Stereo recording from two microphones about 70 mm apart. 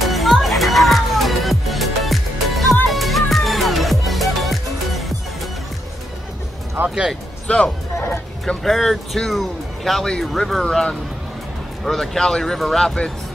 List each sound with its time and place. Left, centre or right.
0.0 s music: centre
6.8 s music: right
7.5 s speech: centre
7.9 s music: left
8.5 s speech: centre